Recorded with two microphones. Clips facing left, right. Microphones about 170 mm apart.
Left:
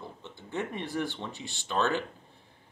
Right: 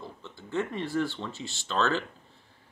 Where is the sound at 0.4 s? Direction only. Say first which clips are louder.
Right 3 dB; 15° left (ahead or behind).